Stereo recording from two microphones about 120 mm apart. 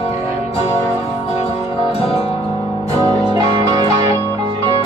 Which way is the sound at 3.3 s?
30° right (ahead or behind).